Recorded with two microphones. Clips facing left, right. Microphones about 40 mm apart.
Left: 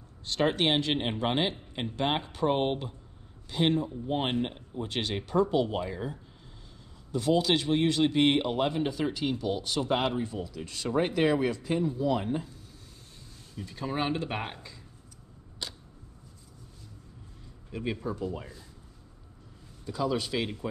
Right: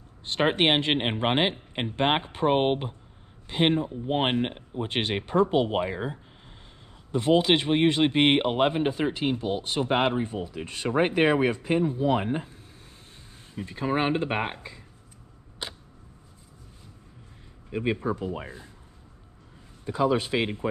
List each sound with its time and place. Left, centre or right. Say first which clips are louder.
0.2 s speech: right 3 dB; right
15.6 s a sound: right 3 dB; right
17.6 s speech: right 6 dB; right
19.8 s speech: right 6 dB; right